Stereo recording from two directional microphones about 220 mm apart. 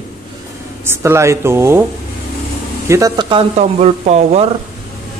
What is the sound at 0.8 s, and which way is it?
Speech, 10° right (ahead or behind).